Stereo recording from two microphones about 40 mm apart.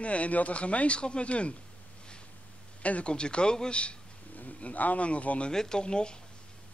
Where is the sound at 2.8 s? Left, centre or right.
Left.